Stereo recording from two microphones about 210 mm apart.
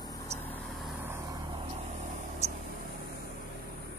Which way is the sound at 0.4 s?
5° left (ahead or behind).